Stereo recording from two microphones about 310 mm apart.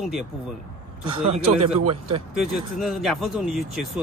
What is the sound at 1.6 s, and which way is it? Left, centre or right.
Speech, right.